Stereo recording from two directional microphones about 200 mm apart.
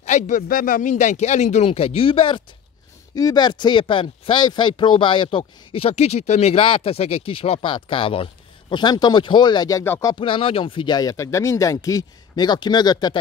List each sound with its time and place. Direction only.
0.0 s a man's voice: 40° left (ahead or behind); by 10.1 s 15° left (ahead or behind)
10.1 s speech: 25° left (ahead or behind)